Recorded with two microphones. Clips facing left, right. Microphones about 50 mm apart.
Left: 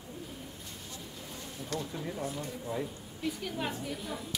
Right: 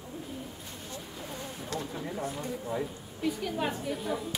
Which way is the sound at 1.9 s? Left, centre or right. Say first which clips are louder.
Right 2 dB; centre.